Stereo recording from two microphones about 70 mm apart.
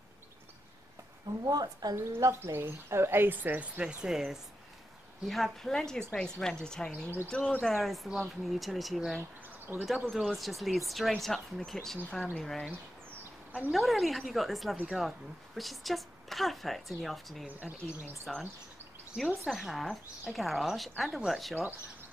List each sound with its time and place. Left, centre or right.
1.4 s speech: right
2.0 s speech: right; by 9.2 s centre
9.7 s speech: right
10.0 s speech: centre
13.7 s speech: centre
17.5 s speech: right
18.2 s speech: centre